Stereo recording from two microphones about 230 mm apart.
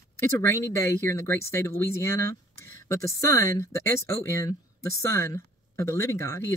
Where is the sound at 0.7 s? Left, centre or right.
Centre.